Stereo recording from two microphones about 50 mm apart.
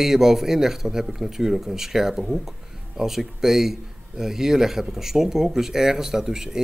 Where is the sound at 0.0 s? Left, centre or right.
Centre.